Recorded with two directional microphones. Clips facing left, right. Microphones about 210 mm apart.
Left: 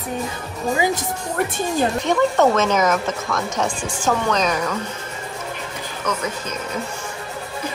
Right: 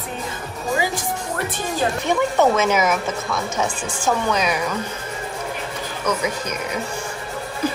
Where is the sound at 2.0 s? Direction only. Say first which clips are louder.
Even; 5° right (ahead or behind).